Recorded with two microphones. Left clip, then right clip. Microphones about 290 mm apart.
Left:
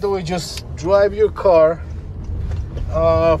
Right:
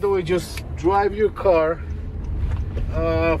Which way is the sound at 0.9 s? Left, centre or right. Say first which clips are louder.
Left 6 dB; centre.